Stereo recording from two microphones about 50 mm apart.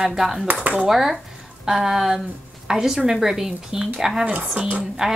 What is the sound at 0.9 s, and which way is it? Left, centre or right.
Speech, centre.